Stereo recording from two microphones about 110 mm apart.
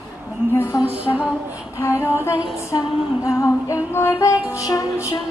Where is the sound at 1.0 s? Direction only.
15° right (ahead or behind).